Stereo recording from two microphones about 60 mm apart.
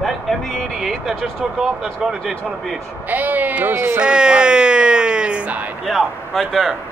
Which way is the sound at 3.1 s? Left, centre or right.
Right.